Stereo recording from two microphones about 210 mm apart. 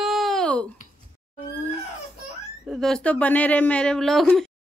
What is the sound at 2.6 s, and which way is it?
Speech, centre (ahead or behind).